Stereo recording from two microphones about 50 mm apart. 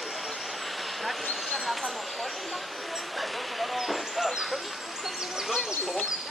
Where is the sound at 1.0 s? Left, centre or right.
Centre.